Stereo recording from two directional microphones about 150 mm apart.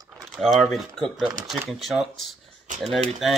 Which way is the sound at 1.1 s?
30° right (ahead or behind).